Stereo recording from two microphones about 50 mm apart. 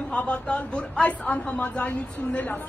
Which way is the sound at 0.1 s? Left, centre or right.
Left.